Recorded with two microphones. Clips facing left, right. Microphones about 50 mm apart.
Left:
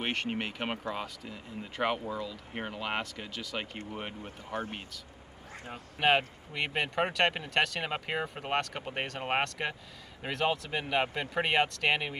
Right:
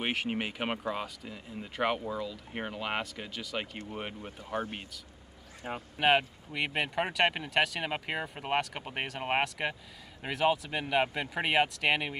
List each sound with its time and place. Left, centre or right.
0.0 s speech: centre
5.9 s speech: centre